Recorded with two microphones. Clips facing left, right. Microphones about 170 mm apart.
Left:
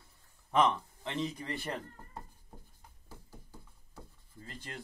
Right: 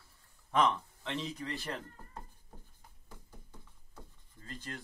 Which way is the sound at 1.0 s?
15° left (ahead or behind).